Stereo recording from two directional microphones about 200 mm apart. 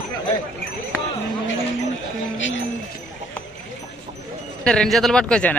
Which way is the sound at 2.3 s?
70° left (ahead or behind).